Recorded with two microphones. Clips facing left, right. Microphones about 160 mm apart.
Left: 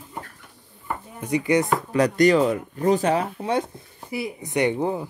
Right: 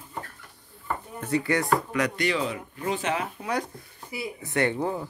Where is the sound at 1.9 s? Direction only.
40° left (ahead or behind).